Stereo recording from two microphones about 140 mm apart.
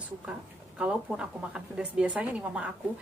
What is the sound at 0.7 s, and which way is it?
A woman's voice, 10° right (ahead or behind).